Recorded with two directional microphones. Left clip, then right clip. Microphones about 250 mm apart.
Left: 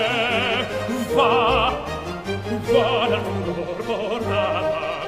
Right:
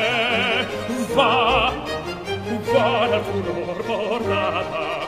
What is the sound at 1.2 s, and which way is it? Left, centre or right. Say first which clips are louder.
Music: even; centre.